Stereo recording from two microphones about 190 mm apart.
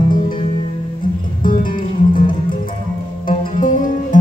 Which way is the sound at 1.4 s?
45° left (ahead or behind).